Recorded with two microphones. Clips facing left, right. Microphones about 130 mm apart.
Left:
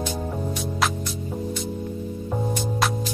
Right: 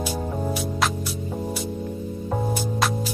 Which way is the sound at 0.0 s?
10° right (ahead or behind).